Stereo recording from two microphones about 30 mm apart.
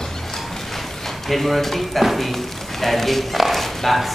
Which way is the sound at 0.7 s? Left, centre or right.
Centre.